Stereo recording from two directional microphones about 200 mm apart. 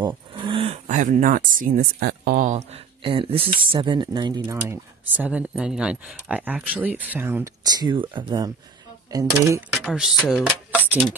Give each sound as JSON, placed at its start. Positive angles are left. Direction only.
{"t": 0.4, "sound": "speech", "side_deg": -25}
{"t": 9.7, "sound": "music", "side_deg": 0}
{"t": 10.2, "sound": "speech", "side_deg": 5}